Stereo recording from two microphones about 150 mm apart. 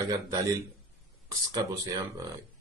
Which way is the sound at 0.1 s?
20° right (ahead or behind).